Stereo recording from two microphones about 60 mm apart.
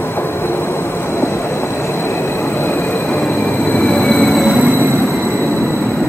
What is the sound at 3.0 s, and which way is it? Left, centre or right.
Train, centre.